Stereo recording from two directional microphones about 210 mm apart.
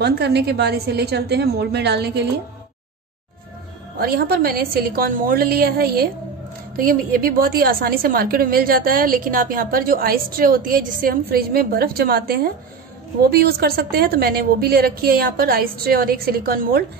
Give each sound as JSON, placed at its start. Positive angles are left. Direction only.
{"t": 0.0, "sound": "a woman's voice", "side_deg": -50}
{"t": 4.0, "sound": "a woman's voice", "side_deg": -45}